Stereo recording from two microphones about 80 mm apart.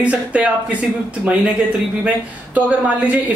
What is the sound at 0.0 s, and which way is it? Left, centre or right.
Speech, centre.